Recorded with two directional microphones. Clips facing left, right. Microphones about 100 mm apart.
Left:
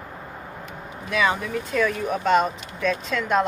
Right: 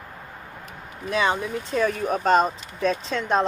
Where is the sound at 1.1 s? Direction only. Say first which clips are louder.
Even; 30° right (ahead or behind).